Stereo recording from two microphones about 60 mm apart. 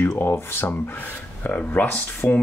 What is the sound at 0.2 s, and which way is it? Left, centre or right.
Speech, left.